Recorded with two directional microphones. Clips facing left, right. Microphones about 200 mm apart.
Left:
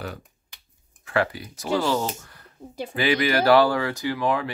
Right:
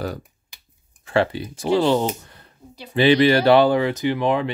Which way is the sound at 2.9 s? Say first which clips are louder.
Right 8 dB; 25° right (ahead or behind).